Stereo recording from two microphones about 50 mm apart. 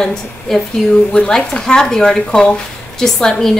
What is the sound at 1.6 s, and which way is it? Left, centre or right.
Speech, centre.